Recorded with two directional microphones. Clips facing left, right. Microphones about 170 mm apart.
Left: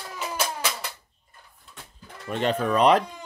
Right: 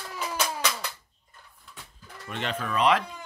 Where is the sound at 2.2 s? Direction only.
40° left (ahead or behind).